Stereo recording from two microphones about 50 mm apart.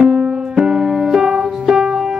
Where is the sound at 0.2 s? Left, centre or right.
Centre.